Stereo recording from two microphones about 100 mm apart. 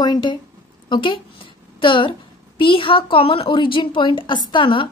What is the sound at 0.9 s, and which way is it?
A woman's voice, 55° left (ahead or behind).